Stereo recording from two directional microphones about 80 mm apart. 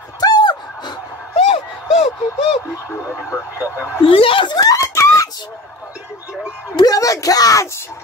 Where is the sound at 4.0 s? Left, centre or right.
Left.